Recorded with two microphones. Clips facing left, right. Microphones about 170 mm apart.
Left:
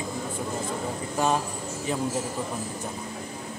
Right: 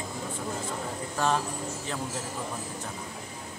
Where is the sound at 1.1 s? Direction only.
15° left (ahead or behind).